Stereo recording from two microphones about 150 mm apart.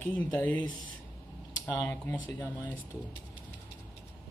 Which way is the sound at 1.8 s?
15° left (ahead or behind).